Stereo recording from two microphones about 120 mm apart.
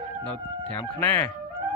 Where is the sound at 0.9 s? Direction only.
20° left (ahead or behind).